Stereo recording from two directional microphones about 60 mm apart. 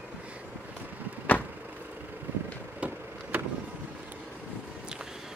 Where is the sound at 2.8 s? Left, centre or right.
Right.